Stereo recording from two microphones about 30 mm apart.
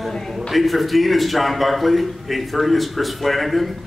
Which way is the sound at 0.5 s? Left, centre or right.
Centre.